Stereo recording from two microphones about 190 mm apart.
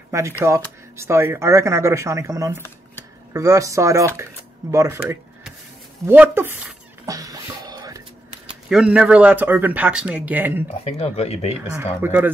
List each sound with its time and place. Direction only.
0.1 s speech: 15° right (ahead or behind)
6.0 s a sound: 10° right (ahead or behind)
8.6 s speech: 5° right (ahead or behind)
10.8 s speech: 35° left (ahead or behind)
11.7 s speech: 10° right (ahead or behind)